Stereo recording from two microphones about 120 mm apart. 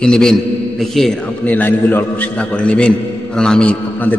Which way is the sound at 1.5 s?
15° left (ahead or behind).